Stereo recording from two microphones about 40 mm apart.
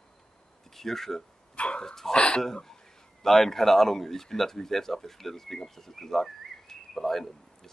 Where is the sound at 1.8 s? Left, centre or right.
Centre.